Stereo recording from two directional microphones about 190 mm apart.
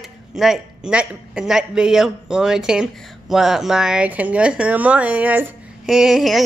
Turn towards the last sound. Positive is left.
turn(degrees=0)  # may be behind; listen again after turning